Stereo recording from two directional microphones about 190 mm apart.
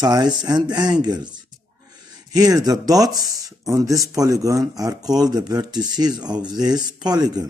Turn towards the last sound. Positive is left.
turn(degrees=-20)  # may be behind; listen again after turning